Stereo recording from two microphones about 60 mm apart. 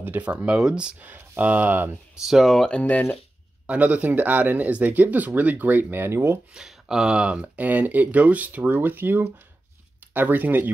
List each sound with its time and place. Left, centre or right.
0.0 s speech: right
1.4 s speech: right
2.2 s speech: centre
2.5 s speech: centre
2.8 s speech: left
3.6 s speech: right
6.5 s speech: centre; by 8.5 s right
8.5 s speech: right